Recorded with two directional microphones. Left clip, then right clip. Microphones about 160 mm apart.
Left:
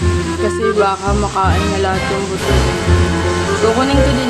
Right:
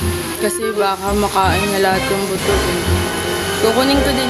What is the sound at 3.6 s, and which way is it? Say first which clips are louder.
Speech: right 1 dB; 5° right (ahead or behind).